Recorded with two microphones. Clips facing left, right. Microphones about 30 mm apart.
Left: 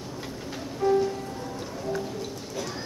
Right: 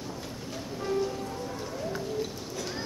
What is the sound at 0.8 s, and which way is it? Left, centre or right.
Music, centre.